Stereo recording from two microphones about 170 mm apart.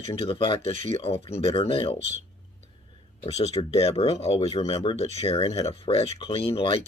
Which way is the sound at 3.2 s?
35° left (ahead or behind).